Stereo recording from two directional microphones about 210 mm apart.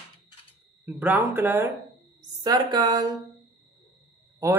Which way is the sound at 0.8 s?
5° right (ahead or behind).